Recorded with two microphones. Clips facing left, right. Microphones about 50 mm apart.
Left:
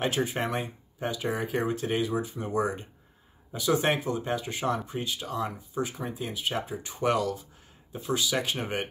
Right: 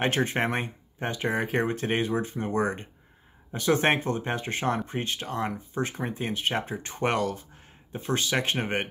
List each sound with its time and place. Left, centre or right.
0.0 s speech: right